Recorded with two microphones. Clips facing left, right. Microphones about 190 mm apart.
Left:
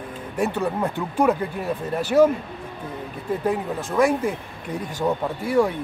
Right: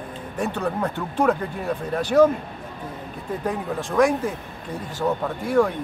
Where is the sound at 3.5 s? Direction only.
5° left (ahead or behind).